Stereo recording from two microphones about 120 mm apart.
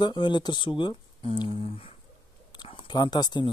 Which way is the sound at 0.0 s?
40° left (ahead or behind).